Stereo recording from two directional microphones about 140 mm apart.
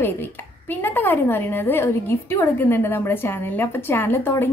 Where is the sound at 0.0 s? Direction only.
15° left (ahead or behind).